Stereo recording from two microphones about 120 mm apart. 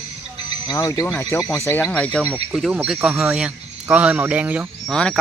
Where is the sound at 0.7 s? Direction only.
25° left (ahead or behind); by 2.2 s 10° left (ahead or behind).